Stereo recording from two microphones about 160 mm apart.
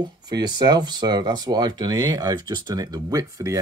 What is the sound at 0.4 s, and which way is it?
Speech, 25° right (ahead or behind).